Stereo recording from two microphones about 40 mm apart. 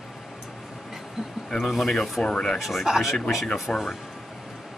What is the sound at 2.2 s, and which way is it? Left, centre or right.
Speech, centre.